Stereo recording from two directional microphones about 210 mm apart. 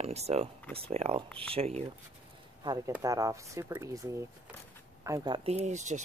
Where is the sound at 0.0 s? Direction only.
30° right (ahead or behind).